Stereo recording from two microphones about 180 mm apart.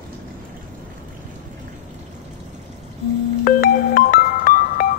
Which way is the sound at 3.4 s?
50° left (ahead or behind).